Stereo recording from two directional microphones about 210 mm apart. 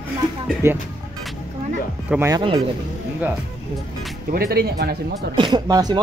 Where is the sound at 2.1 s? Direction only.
10° right (ahead or behind).